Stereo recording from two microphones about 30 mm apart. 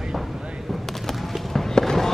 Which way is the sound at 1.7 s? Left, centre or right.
Centre.